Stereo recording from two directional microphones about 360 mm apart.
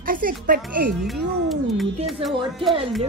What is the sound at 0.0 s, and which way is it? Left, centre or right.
Speech, right.